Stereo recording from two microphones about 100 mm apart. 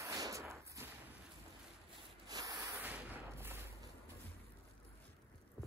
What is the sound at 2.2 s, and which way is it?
Rub, 40° right (ahead or behind).